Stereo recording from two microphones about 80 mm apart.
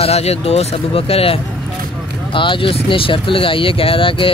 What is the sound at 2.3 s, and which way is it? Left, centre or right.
Speech, left.